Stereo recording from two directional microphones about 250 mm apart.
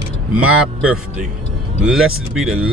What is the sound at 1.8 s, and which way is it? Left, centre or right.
Speech, centre.